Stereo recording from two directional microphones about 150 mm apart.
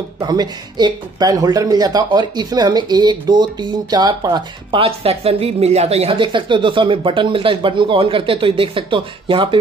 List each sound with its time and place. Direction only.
0.2 s speech: 30° right (ahead or behind)